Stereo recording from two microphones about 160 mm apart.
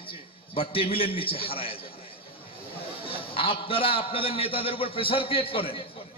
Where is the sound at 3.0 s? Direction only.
35° left (ahead or behind).